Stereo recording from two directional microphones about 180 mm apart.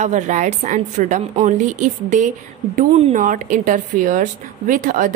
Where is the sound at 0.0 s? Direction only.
40° right (ahead or behind).